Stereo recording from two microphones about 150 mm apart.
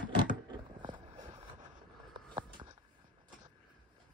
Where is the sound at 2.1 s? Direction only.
30° right (ahead or behind).